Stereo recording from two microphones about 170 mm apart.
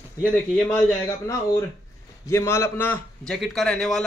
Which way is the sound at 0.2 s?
10° left (ahead or behind).